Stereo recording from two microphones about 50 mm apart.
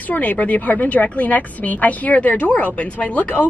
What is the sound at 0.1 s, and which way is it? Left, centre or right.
A woman's voice, left.